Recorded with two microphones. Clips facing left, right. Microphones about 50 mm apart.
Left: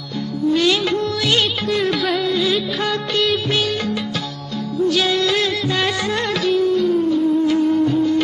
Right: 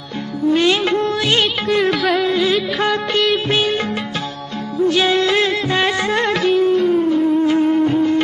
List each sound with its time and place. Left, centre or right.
0.5 s music of bollywood: right
1.9 s music: centre
2.2 s music of bollywood: right
4.8 s music of bollywood: right